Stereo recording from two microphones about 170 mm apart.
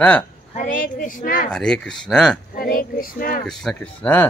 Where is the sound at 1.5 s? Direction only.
5° left (ahead or behind).